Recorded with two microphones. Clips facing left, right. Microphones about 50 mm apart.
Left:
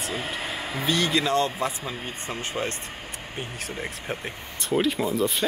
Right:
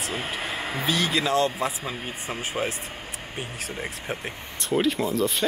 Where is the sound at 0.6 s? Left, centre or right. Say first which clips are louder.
Right 1 dB; right.